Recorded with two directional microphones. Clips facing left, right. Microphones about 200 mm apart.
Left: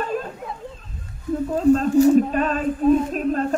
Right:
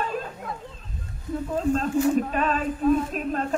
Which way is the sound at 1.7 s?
40° left (ahead or behind).